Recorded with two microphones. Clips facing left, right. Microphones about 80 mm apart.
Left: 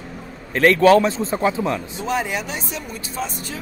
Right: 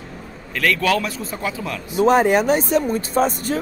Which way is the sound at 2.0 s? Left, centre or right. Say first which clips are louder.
Right 9 dB; right.